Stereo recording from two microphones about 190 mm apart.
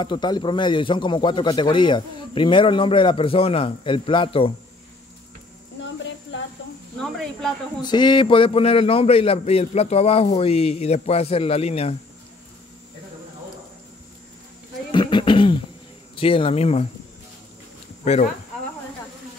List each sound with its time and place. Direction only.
0.0 s speech: 25° left (ahead or behind)
5.8 s a sound: 75° left (ahead or behind)
7.0 s speech: centre (ahead or behind)
7.8 s a man's voice: 25° left (ahead or behind)
14.9 s a sound: 25° left (ahead or behind)
16.2 s speech: 30° left (ahead or behind)
18.0 s a man's voice: 35° left (ahead or behind)